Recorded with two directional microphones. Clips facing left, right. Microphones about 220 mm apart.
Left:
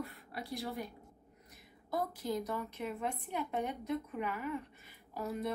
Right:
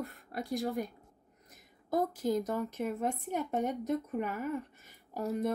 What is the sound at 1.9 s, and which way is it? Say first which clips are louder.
A woman's voice: right 6 dB; 45° right (ahead or behind).